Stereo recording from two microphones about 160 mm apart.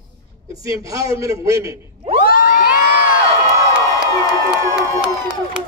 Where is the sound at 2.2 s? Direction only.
60° left (ahead or behind).